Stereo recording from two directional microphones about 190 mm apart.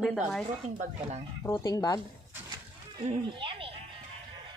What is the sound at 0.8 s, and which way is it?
Speech, 35° right (ahead or behind).